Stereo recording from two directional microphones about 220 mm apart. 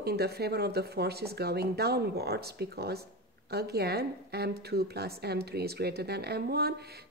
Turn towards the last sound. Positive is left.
turn(degrees=-45)  # may be behind; listen again after turning